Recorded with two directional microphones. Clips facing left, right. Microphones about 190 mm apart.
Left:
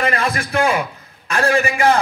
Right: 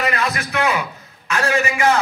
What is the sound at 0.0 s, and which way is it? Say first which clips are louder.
A man's voice: left 2 dB; 30° left (ahead or behind).